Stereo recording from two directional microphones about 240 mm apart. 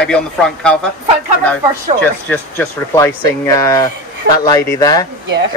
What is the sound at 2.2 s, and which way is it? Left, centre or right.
Speech, centre.